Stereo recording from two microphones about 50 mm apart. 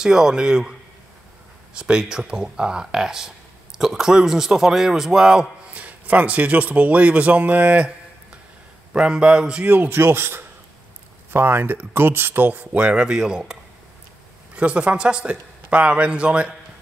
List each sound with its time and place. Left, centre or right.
0.0 s speech: centre
5.7 s speech: right
8.9 s speech: centre
9.8 s speech: right
12.7 s speech: centre